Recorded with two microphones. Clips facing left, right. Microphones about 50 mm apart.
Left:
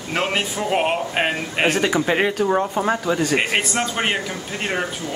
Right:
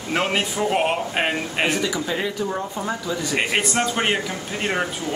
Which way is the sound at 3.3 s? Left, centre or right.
Centre.